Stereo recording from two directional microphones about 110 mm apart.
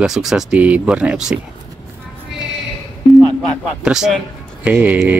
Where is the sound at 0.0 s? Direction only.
5° right (ahead or behind).